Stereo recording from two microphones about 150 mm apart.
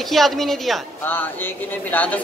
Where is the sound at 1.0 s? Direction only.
15° left (ahead or behind).